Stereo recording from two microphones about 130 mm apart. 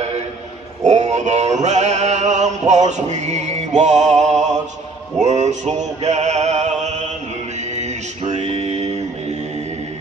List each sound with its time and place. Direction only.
0.8 s mantra: 60° right (ahead or behind)
5.2 s male singing: 65° right (ahead or behind)
6.8 s mantra: 65° right (ahead or behind)
7.7 s a sound: 60° right (ahead or behind)